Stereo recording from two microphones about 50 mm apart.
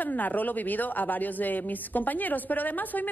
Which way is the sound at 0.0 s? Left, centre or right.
Left.